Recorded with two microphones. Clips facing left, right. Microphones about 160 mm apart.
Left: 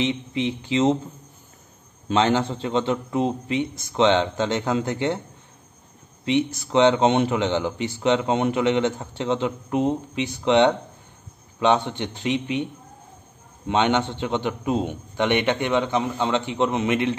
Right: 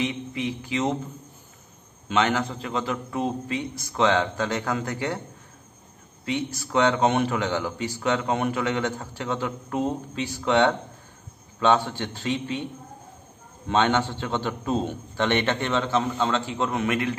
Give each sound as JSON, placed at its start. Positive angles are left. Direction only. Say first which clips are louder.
{"t": 0.0, "sound": "a man's voice", "louder": "left 4 dB", "side_deg": 25}
{"t": 2.0, "sound": "a man's voice", "louder": "left 3 dB", "side_deg": 30}
{"t": 6.2, "sound": "a man's voice", "louder": "left 6 dB", "side_deg": 20}
{"t": 13.7, "sound": "a man's voice", "louder": "left 1 dB", "side_deg": 20}